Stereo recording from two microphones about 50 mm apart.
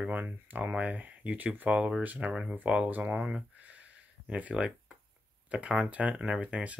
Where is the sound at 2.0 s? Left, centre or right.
Right.